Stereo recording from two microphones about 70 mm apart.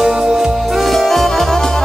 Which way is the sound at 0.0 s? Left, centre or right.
Centre.